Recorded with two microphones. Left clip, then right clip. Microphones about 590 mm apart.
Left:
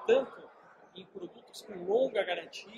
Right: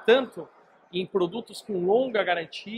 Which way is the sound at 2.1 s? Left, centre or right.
Right.